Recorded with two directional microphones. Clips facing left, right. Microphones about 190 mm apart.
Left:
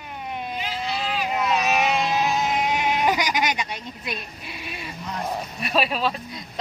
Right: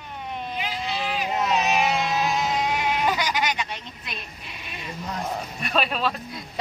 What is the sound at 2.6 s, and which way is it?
Speech, 20° left (ahead or behind).